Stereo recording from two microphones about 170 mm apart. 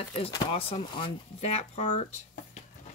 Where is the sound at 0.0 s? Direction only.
25° left (ahead or behind).